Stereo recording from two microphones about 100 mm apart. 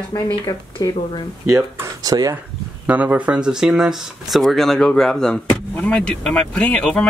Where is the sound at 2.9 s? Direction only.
15° right (ahead or behind).